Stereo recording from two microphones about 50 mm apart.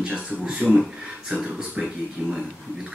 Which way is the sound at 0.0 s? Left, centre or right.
Right.